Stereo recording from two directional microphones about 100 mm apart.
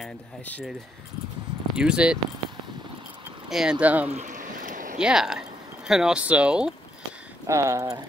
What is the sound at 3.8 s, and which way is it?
Speech, 15° right (ahead or behind).